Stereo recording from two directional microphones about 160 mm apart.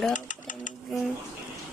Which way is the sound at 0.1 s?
55° left (ahead or behind).